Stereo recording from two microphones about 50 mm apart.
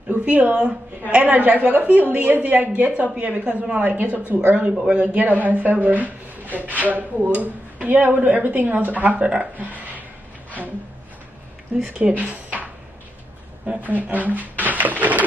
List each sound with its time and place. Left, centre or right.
0.2 s a woman's voice: right
4.6 s a woman's voice: right
11.7 s a woman's voice: right
12.2 s a sound: right
13.7 s a woman's voice: right
14.6 s a sound: right